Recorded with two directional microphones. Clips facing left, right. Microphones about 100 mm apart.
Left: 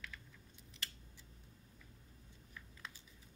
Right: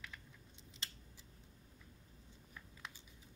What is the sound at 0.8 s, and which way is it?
Scissors, 20° right (ahead or behind).